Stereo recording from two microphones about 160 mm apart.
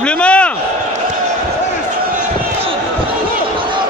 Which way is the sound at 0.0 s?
5° left (ahead or behind).